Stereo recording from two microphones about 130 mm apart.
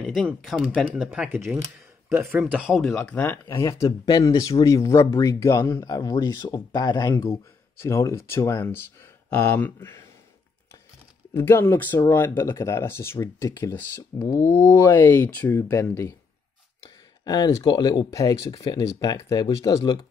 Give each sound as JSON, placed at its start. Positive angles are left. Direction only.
{"t": 0.0, "sound": "speech", "side_deg": 5}
{"t": 11.3, "sound": "speech", "side_deg": 20}
{"t": 17.2, "sound": "speech", "side_deg": 30}